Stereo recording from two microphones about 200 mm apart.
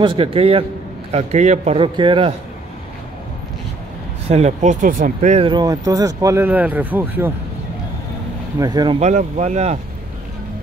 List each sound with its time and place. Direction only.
0.0 s a man's voice: 25° right (ahead or behind)
4.3 s speech: 35° right (ahead or behind); by 7.3 s 10° right (ahead or behind)
8.5 s a man's voice: 20° right (ahead or behind)
9.0 s a man's voice: 35° right (ahead or behind)